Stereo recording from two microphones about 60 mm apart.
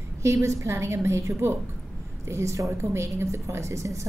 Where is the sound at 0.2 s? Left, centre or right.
Right.